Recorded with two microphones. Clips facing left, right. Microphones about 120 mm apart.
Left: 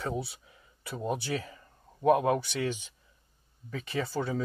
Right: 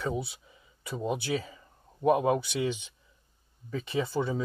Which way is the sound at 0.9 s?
15° right (ahead or behind).